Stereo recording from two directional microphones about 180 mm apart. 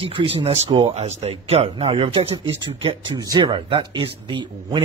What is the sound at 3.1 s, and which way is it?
Speech, 20° right (ahead or behind).